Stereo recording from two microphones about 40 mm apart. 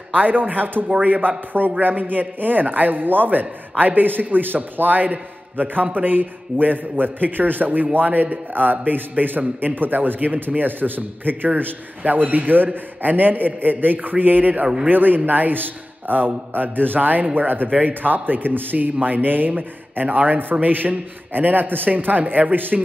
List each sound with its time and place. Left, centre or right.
0.1 s a man's voice: right